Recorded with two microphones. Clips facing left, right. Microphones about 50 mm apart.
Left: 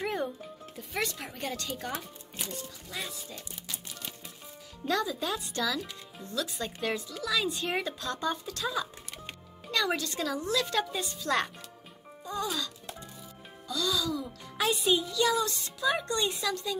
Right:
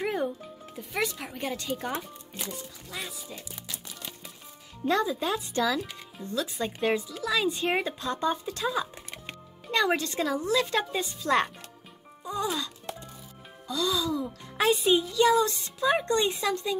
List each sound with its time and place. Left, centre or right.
0.0 s music: centre
0.7 s speech: centre
2.9 s speech: centre
4.8 s a woman's voice: right
9.7 s a woman's voice: right